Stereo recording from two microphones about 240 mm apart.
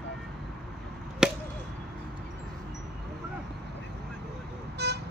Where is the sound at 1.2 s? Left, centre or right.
Centre.